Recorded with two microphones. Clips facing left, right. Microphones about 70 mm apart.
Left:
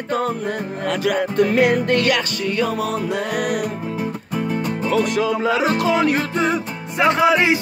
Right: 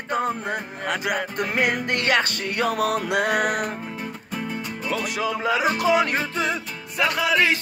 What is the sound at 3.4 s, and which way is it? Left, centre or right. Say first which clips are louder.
Music: left 1 dB; right.